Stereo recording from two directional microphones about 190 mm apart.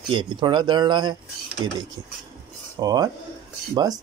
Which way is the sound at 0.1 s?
25° right (ahead or behind).